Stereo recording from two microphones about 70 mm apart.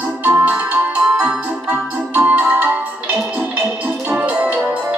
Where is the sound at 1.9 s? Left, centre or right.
Centre.